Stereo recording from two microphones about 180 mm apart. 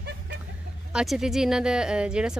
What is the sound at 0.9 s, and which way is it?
Speech, 5° right (ahead or behind).